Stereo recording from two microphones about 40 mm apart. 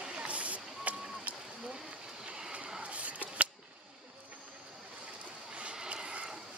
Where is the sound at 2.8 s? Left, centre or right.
Right.